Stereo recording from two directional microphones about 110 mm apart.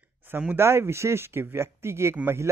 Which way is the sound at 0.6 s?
25° right (ahead or behind).